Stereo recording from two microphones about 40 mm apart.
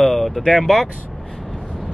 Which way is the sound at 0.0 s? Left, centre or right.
Centre.